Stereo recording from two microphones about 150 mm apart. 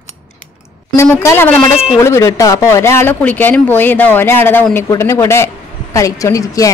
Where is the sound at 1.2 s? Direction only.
15° left (ahead or behind).